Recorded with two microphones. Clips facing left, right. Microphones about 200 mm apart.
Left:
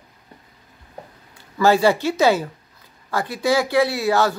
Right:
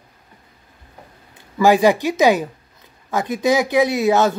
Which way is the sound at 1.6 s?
15° right (ahead or behind).